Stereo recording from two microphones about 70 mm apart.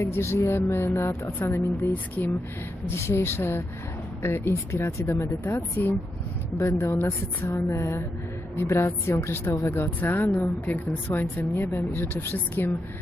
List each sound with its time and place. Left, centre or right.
0.0 s speech: left
6.6 s speech: left